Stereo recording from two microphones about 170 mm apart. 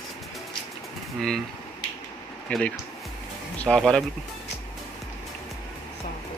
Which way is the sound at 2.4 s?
5° left (ahead or behind).